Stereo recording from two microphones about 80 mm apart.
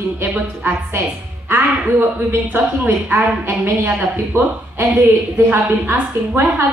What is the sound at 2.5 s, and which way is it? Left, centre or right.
A woman's voice, right.